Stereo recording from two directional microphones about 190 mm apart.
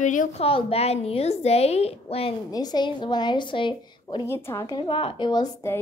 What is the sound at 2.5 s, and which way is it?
A woman's voice, 20° left (ahead or behind).